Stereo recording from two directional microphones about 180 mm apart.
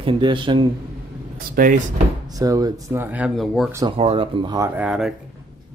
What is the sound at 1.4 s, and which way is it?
Speech, 50° right (ahead or behind).